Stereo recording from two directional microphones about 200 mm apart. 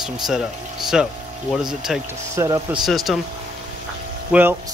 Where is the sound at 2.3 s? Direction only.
15° right (ahead or behind).